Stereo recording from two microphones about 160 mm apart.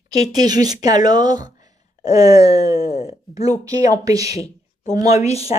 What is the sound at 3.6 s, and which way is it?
Speech, 20° right (ahead or behind).